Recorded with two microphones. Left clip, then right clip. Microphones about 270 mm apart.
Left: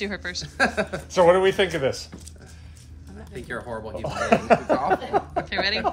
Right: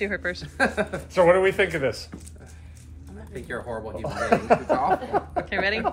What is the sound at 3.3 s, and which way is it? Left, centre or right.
Speech, centre.